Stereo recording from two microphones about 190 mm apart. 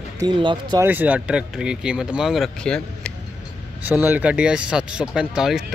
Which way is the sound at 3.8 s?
10° right (ahead or behind).